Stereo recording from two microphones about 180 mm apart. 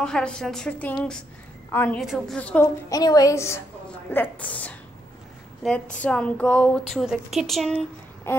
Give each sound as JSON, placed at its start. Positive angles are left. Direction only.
{"t": 0.0, "sound": "a woman's voice", "side_deg": 5}
{"t": 2.9, "sound": "a woman's voice", "side_deg": 20}
{"t": 8.3, "sound": "a sound", "side_deg": 15}